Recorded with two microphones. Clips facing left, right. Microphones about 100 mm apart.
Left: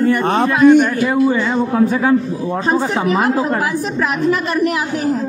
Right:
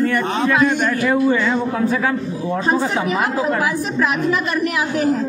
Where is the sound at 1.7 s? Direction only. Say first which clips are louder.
Left 4 dB; 25° left (ahead or behind).